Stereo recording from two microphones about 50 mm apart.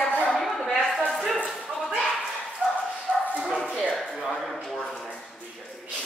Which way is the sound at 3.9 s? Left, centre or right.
Centre.